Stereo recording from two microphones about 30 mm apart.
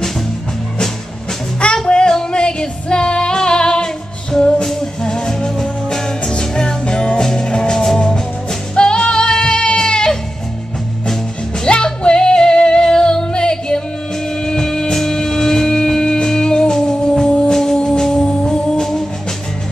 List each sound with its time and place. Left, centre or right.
1.9 s music: left
5.0 s music: left
7.2 s music: centre
7.4 s music: left
8.7 s music: left
11.7 s music: left
12.7 s female singing: left
14.4 s music: left